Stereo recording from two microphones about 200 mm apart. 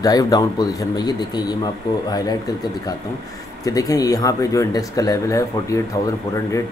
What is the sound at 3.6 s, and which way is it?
Speech, 15° left (ahead or behind).